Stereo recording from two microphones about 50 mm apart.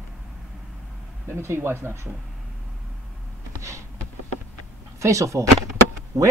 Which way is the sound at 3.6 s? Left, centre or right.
Right.